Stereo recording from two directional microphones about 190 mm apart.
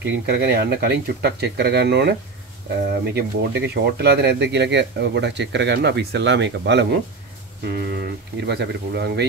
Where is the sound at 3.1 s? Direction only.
60° right (ahead or behind).